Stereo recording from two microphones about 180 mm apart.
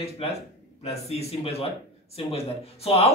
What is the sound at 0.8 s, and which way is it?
Speech, 35° left (ahead or behind).